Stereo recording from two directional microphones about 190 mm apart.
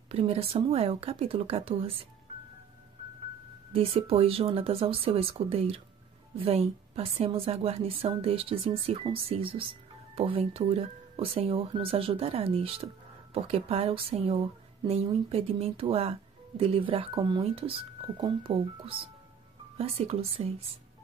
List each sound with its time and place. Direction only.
0.1 s speech: 30° right (ahead or behind)
3.7 s a woman's voice: 30° right (ahead or behind)